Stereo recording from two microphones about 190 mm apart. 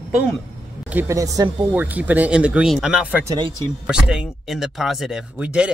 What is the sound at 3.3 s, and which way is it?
Speech, 25° right (ahead or behind).